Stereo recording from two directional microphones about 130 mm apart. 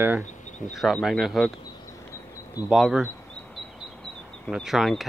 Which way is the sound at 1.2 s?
Centre (ahead or behind).